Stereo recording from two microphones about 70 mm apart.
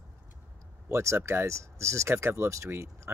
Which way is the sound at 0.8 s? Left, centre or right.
Right.